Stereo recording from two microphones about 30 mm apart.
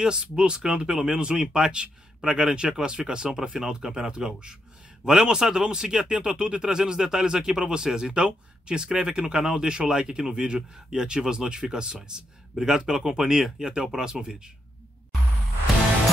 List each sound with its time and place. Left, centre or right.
0.0 s speech: right
3.8 s speech: centre
12.5 s speech: centre